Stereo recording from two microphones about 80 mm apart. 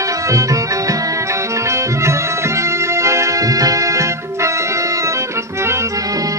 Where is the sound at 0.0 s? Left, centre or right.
Right.